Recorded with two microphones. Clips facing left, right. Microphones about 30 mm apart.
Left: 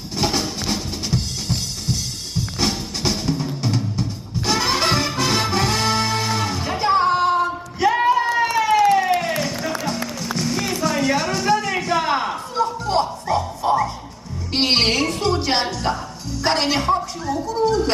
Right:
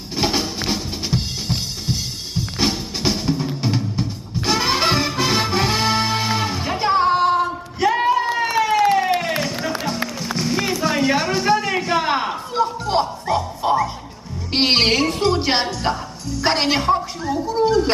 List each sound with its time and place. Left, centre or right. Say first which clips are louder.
0.2 s drum: right 1 dB; centre
8.5 s music: even; centre
10.9 s a sound: right 1 dB; centre
13.6 s music: even; right
14.5 s music: right 2 dB; centre